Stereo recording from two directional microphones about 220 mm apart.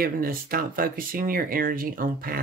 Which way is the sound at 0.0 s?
40° right (ahead or behind).